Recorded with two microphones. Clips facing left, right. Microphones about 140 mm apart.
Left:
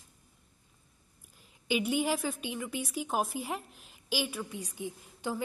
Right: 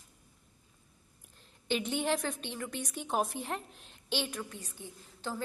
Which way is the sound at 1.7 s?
5° left (ahead or behind).